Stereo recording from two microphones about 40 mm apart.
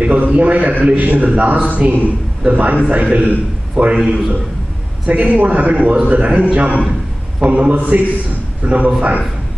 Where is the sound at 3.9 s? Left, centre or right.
Centre.